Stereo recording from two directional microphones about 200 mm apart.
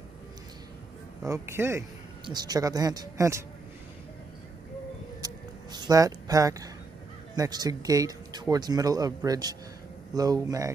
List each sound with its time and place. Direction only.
1.2 s a man's voice: 15° right (ahead or behind)
5.2 s a sound: 20° right (ahead or behind)
7.3 s a man's voice: 20° right (ahead or behind)